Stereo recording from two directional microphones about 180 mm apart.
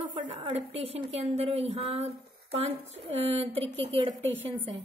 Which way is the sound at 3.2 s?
35° right (ahead or behind).